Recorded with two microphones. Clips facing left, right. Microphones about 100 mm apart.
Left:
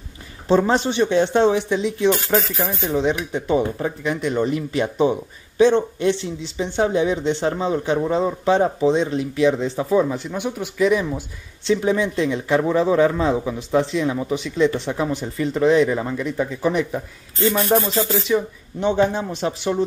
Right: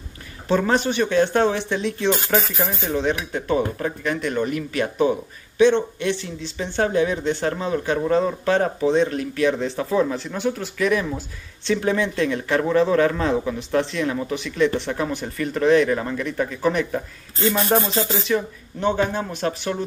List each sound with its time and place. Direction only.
0.5 s speech: 25° left (ahead or behind)
2.0 s speech: 20° right (ahead or behind)
2.6 s speech: centre (ahead or behind)
2.9 s speech: 20° left (ahead or behind)
5.6 s speech: 35° left (ahead or behind)
6.4 s speech: 20° left (ahead or behind)
17.6 s speech: 25° right (ahead or behind)
18.3 s speech: 20° left (ahead or behind)